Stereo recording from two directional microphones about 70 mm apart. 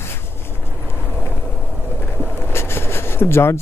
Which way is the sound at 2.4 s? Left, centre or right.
Left.